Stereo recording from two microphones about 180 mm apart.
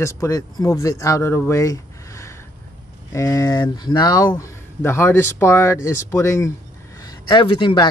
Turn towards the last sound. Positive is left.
turn(degrees=25)  # may be behind; listen again after turning